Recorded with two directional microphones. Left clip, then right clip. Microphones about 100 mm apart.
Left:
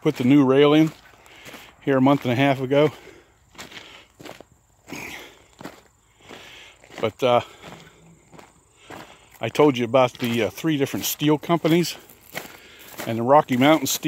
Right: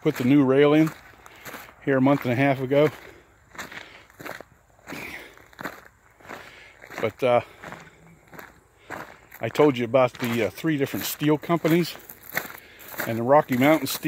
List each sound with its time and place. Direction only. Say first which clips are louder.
0.0 s speech: left 2 dB; 40° left (ahead or behind)
1.4 s walk: left 1 dB; 40° left (ahead or behind)
2.2 s speech: left 2 dB; 30° left (ahead or behind)
4.9 s a sound: left 2 dB; 40° left (ahead or behind)
6.3 s walk: even; 35° left (ahead or behind)
7.0 s speech: left 2 dB; 40° left (ahead or behind)
9.4 s speech: left 2 dB; 40° left (ahead or behind)
12.5 s walk: even; 30° left (ahead or behind)
13.0 s speech: left 2 dB; 35° left (ahead or behind)